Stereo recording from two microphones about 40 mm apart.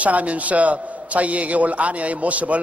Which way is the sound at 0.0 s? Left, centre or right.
Right.